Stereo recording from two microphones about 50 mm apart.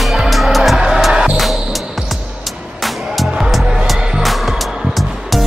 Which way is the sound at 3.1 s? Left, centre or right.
Centre.